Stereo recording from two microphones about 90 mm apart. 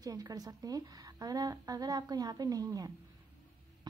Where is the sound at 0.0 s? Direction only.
45° right (ahead or behind).